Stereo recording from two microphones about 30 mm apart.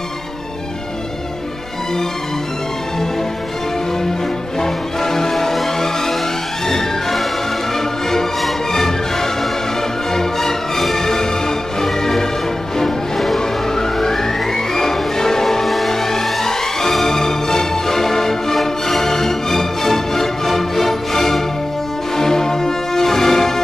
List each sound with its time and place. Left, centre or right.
4.6 s music: centre
10.8 s music: centre
13.4 s emergency vehicle: centre
15.4 s music: centre
15.9 s music: centre